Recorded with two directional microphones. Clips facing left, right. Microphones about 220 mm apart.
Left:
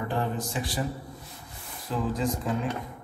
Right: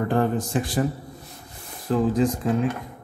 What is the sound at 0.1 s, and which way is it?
Speech, 50° right (ahead or behind).